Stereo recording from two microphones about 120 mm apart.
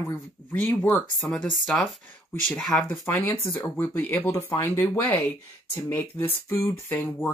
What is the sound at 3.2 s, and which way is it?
Speech, 20° left (ahead or behind).